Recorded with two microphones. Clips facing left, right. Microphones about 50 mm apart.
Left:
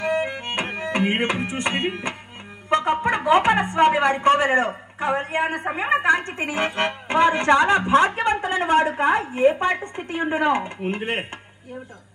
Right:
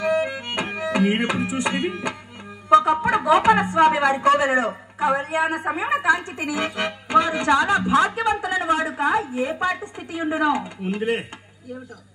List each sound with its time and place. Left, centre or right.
0.0 s music: left
2.7 s speech: left